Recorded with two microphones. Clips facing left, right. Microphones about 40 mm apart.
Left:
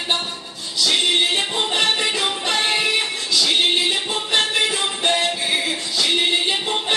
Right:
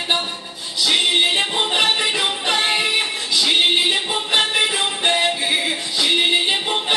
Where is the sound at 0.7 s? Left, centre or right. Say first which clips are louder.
Right 1 dB; centre.